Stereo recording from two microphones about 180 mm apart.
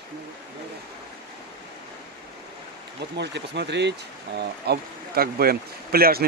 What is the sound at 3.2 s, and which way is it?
Speech, 70° right (ahead or behind).